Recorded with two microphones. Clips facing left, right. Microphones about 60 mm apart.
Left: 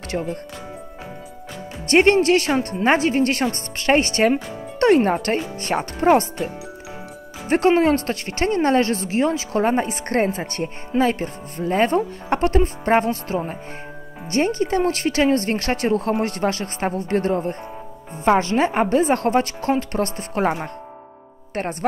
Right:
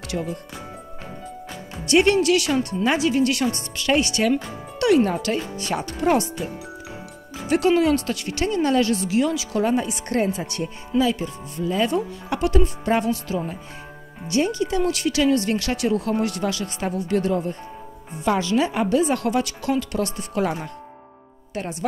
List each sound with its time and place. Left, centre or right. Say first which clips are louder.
0.1 s speech: left 2 dB; left
1.9 s speech: left 2 dB; left